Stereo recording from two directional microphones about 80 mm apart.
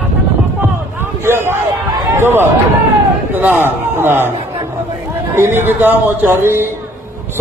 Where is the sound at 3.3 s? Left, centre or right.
Right.